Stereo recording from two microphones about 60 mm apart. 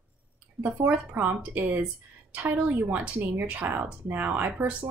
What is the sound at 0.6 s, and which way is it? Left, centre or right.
Speech, right.